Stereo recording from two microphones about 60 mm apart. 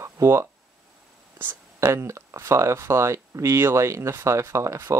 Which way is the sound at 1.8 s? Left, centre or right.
Right.